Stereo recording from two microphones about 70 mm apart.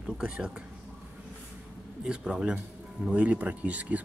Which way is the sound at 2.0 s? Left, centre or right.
Centre.